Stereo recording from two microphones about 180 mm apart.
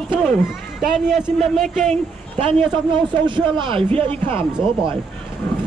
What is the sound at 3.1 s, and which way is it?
Speech, 25° right (ahead or behind).